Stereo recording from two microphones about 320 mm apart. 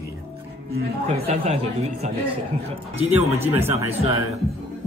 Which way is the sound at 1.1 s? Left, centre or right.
Centre.